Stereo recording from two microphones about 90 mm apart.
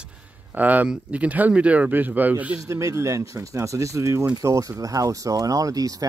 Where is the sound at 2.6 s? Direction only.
35° right (ahead or behind).